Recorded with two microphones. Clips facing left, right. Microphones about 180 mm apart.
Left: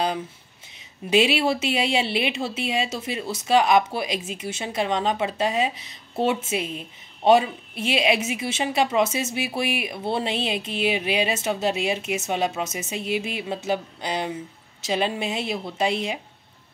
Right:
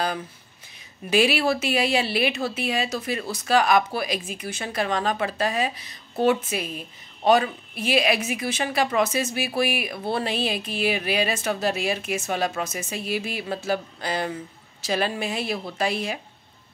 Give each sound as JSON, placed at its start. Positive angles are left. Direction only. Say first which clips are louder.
{"t": 1.1, "sound": "a woman's voice", "louder": "left 1 dB", "side_deg": 20}